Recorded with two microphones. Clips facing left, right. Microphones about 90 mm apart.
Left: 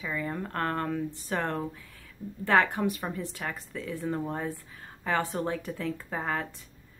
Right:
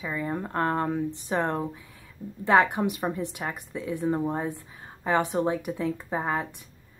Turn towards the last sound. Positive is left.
turn(degrees=-15)  # may be behind; listen again after turning